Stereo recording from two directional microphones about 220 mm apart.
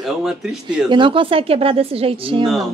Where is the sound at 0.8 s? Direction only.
20° right (ahead or behind).